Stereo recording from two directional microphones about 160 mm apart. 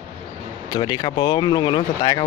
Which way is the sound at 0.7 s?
25° left (ahead or behind).